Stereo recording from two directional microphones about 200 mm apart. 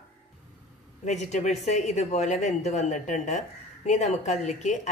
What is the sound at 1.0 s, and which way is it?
Speech, 35° left (ahead or behind).